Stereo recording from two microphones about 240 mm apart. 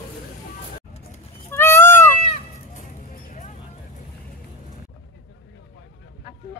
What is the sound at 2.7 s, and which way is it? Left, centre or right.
Honk, left.